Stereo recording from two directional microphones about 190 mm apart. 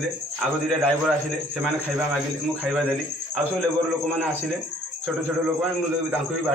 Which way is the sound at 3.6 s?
10° right (ahead or behind).